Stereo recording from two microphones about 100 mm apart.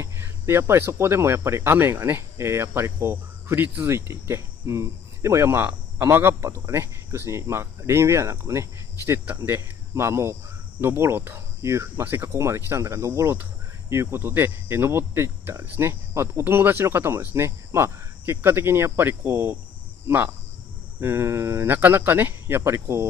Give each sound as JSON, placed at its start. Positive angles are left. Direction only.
{"t": 0.0, "sound": "speech", "side_deg": -25}
{"t": 21.0, "sound": "speech", "side_deg": -25}